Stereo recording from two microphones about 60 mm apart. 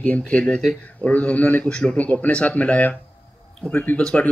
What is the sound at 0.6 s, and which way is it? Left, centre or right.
Speech, centre.